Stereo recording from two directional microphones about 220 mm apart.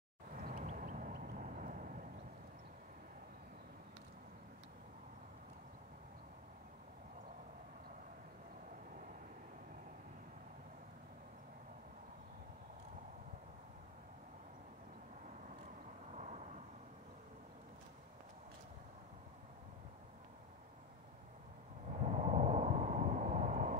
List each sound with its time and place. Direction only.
0.3 s vehicle: 35° right (ahead or behind)
16.1 s vehicle: 30° right (ahead or behind)
22.0 s vehicle: 30° right (ahead or behind)